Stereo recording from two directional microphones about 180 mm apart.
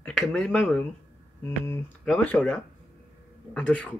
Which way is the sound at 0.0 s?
5° left (ahead or behind).